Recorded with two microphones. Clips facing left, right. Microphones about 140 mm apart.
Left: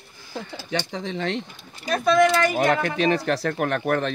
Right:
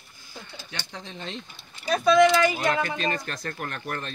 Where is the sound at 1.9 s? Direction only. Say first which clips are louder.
Even; centre (ahead or behind).